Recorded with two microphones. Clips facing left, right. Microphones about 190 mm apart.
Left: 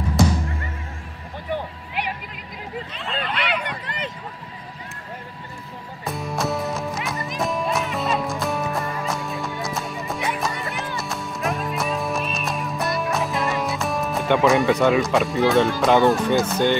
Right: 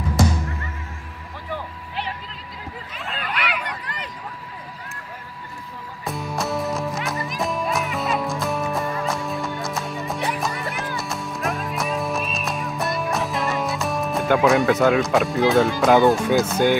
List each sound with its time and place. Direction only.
3.2 s a sound: 25° left (ahead or behind)
6.0 s music: centre (ahead or behind)
15.8 s speech: centre (ahead or behind)